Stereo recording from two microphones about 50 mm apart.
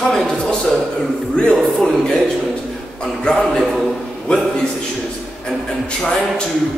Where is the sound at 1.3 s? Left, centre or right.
Centre.